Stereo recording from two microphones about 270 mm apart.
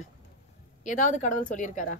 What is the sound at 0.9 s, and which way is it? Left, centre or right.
Speech, left.